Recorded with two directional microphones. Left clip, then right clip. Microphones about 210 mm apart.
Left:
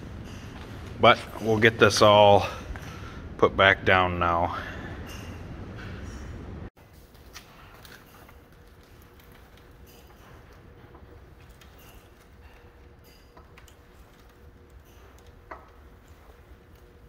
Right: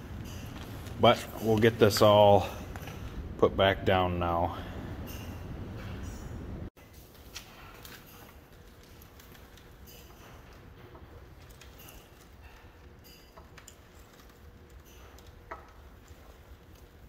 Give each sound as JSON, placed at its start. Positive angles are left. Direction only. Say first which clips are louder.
{"t": 1.0, "sound": "speech", "louder": "left 5 dB", "side_deg": -15}